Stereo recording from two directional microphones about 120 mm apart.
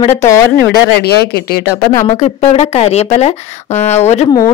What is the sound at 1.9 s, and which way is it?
Speech, 70° left (ahead or behind).